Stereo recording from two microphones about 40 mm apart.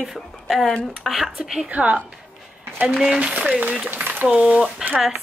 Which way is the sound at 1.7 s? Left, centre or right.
Right.